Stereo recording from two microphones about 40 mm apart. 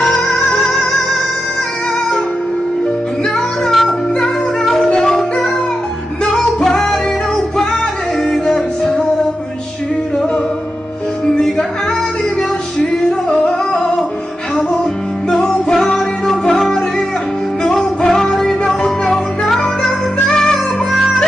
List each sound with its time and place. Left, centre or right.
0.5 s music: centre
3.7 s music: centre
6.7 s music: centre
8.2 s music: centre
13.3 s flamenco: centre
15.2 s music: centre